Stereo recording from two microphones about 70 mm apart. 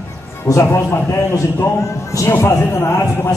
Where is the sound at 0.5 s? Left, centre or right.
Left.